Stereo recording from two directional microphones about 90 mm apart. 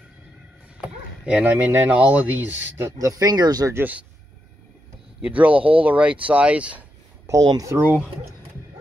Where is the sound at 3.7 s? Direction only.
20° right (ahead or behind).